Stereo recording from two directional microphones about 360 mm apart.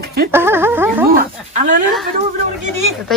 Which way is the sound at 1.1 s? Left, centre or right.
Right.